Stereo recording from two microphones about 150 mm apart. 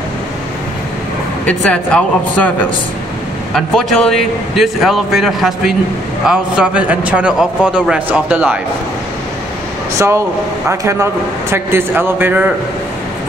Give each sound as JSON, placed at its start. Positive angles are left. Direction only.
{"t": 1.4, "sound": "speech", "side_deg": 10}
{"t": 3.5, "sound": "a man's voice", "side_deg": 0}
{"t": 9.9, "sound": "a man's voice", "side_deg": -20}